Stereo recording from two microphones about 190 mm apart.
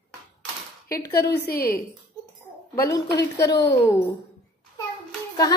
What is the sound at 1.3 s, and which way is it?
Speech, 55° left (ahead or behind).